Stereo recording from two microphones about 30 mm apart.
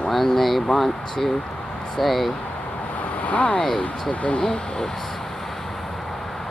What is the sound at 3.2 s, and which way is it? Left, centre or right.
Speech, left.